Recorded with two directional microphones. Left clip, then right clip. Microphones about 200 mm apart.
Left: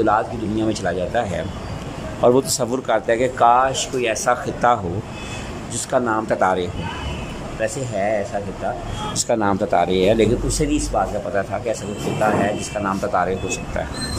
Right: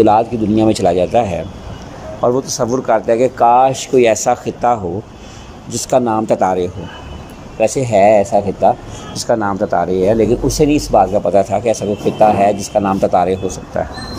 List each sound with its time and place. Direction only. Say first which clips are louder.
0.0 s speech: right 7 dB; 15° right (ahead or behind)
2.2 s speech: right 1 dB; centre (ahead or behind)
7.6 s speech: right 12 dB; 20° right (ahead or behind)
9.3 s speech: right 4 dB; 5° left (ahead or behind)
10.6 s speech: right 11 dB; 15° right (ahead or behind)